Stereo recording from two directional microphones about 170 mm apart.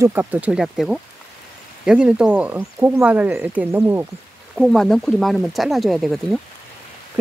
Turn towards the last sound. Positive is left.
turn(degrees=0)  # may be behind; listen again after turning